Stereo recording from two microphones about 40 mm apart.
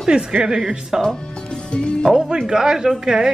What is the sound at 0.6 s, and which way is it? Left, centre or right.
Speech, centre.